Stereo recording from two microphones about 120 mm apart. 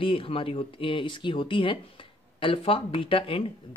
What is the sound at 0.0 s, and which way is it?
Speech, 50° left (ahead or behind).